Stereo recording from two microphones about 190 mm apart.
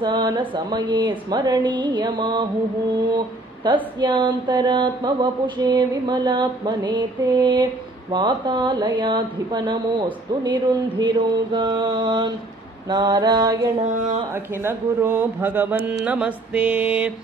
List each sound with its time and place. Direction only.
0.0 s a sound: 25° right (ahead or behind)
13.8 s speech: 40° right (ahead or behind)
14.3 s speech: 10° right (ahead or behind)